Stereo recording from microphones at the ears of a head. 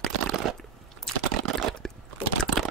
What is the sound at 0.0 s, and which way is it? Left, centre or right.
Crunch, right.